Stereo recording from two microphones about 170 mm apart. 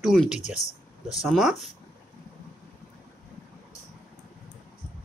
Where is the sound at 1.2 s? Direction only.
Centre (ahead or behind).